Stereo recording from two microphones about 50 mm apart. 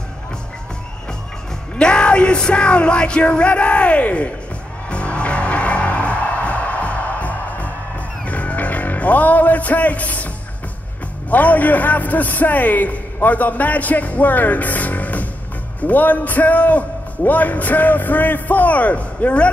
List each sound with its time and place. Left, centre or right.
1.8 s music: centre
11.2 s a man's voice: left